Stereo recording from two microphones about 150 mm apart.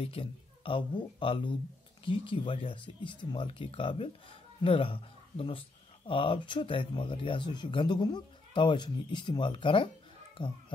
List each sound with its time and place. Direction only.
0.0 s speech: 35° left (ahead or behind)